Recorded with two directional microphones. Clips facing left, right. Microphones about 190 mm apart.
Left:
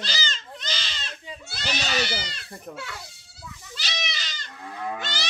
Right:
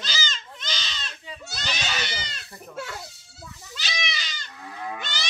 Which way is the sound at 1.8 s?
40° left (ahead or behind).